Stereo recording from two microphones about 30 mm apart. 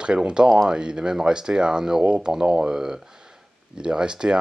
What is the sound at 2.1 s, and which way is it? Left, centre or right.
Speech, right.